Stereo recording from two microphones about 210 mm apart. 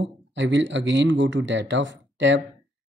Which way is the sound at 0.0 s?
60° right (ahead or behind).